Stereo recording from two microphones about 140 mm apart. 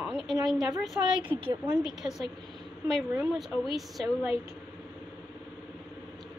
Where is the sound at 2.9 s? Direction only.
Centre (ahead or behind).